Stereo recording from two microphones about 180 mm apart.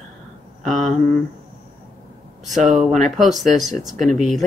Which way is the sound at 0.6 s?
Centre (ahead or behind).